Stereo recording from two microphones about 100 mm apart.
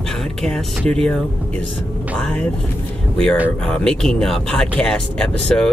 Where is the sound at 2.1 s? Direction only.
10° left (ahead or behind).